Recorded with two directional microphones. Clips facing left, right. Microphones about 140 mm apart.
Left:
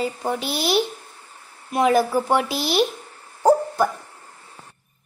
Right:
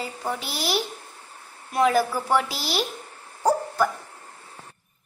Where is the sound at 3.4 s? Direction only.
25° left (ahead or behind).